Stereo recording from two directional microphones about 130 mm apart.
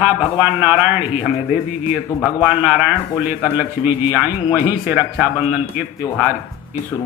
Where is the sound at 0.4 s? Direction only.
15° right (ahead or behind).